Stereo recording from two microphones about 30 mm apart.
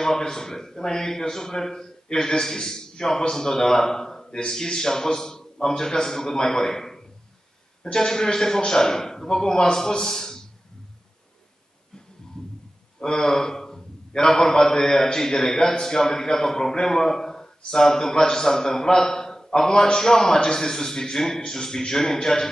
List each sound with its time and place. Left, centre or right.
0.0 s a man's voice: centre
13.0 s a man's voice: centre